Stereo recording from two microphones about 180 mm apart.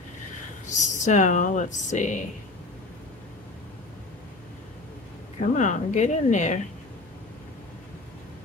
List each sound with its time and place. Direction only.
0.7 s speech: 40° left (ahead or behind)
5.4 s speech: 45° left (ahead or behind)